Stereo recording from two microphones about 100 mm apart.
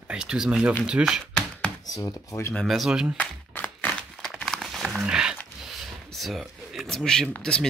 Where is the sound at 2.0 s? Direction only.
30° left (ahead or behind).